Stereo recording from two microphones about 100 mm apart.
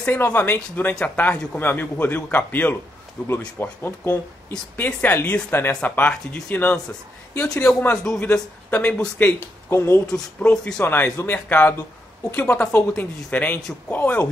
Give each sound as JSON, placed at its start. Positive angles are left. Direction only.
{"t": 0.0, "sound": "a man's voice", "side_deg": 15}
{"t": 9.4, "sound": "speech", "side_deg": 25}
{"t": 10.0, "sound": "a man's voice", "side_deg": 5}
{"t": 13.6, "sound": "speech", "side_deg": 5}
{"t": 13.9, "sound": "a man's voice", "side_deg": 15}